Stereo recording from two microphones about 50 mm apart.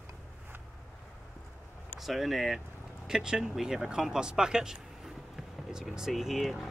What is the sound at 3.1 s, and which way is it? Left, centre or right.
Speech, centre.